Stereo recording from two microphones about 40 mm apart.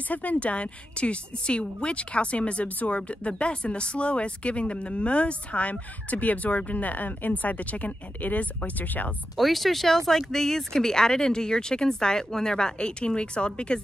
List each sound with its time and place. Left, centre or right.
0.1 s a woman's voice: left
9.4 s speech: centre; by 13.7 s left